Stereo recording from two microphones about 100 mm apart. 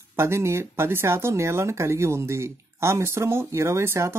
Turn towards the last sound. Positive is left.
turn(degrees=-30)  # may be behind; listen again after turning